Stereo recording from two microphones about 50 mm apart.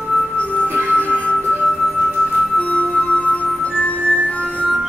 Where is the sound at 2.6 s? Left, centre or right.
Left.